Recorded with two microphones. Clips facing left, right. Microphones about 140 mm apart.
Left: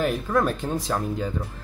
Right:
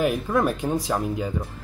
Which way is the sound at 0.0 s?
10° right (ahead or behind).